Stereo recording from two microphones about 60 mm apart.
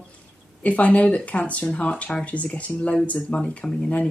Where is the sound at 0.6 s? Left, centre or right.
Left.